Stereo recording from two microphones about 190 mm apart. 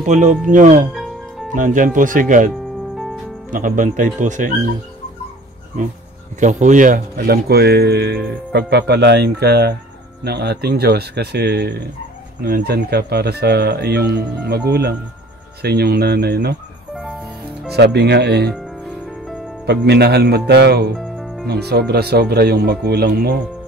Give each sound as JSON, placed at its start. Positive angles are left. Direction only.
{"t": 0.0, "sound": "speech", "side_deg": -40}
{"t": 0.9, "sound": "music", "side_deg": 0}
{"t": 1.5, "sound": "speech", "side_deg": -45}
{"t": 6.4, "sound": "speech", "side_deg": -40}
{"t": 16.9, "sound": "music", "side_deg": 0}
{"t": 17.6, "sound": "speech", "side_deg": -60}
{"t": 19.2, "sound": "music", "side_deg": 0}
{"t": 19.6, "sound": "speech", "side_deg": -60}
{"t": 21.0, "sound": "music", "side_deg": 0}
{"t": 21.5, "sound": "speech", "side_deg": -55}